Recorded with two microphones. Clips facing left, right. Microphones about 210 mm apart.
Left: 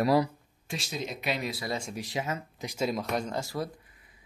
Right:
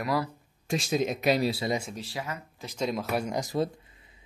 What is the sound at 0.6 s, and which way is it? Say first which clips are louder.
A man's voice: right 8 dB; 50° right (ahead or behind).